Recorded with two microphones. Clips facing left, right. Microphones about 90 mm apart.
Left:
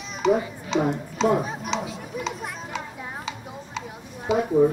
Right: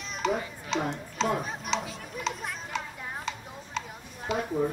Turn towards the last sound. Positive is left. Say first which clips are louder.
# left 9 dB
turn(degrees=5)  # may be behind; listen again after turning